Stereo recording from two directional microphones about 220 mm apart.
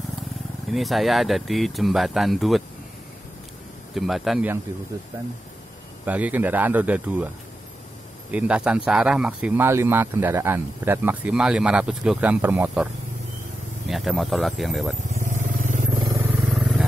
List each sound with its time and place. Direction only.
0.7 s speech: centre (ahead or behind)
3.9 s speech: centre (ahead or behind)
6.0 s speech: 5° right (ahead or behind)
8.3 s speech: 5° right (ahead or behind)
13.8 s speech: centre (ahead or behind)
15.5 s vehicle: 35° right (ahead or behind)
16.0 s vehicle: 10° right (ahead or behind)